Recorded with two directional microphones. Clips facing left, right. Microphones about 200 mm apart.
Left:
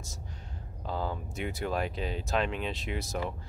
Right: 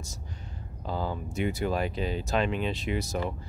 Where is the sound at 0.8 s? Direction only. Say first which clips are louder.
Right 2 dB; centre (ahead or behind).